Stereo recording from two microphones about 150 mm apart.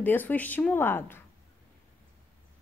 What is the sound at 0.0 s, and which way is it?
Speech, 10° left (ahead or behind).